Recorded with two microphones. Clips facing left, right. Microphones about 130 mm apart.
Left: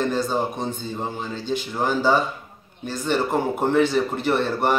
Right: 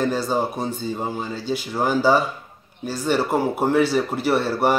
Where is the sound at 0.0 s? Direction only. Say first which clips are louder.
Right 1 dB; 10° right (ahead or behind).